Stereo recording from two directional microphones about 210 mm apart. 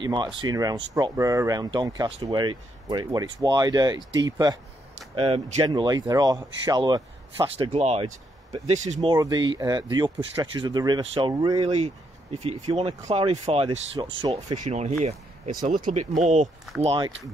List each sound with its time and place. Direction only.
0.0 s speech: 20° right (ahead or behind)
9.1 s speech: 20° right (ahead or behind)